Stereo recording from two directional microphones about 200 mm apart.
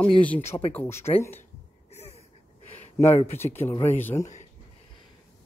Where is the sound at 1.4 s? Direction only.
30° left (ahead or behind).